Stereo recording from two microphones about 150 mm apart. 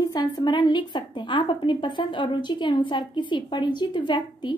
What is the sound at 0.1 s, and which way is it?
A woman's voice, 30° left (ahead or behind).